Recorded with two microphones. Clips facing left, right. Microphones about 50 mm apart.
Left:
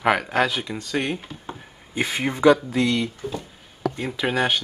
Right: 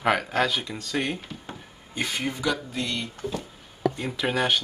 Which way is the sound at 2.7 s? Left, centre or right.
Left.